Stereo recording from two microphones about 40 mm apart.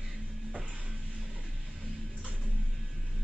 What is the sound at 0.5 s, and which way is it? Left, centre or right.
Music, right.